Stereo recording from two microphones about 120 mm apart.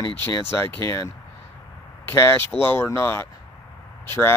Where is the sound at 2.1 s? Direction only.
20° left (ahead or behind).